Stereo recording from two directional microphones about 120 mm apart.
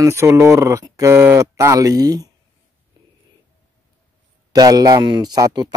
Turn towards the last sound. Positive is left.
turn(degrees=-35)  # may be behind; listen again after turning